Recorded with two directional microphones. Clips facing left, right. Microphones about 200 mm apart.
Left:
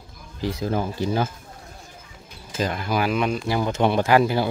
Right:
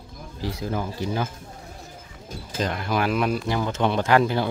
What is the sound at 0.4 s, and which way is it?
Speech, 25° left (ahead or behind).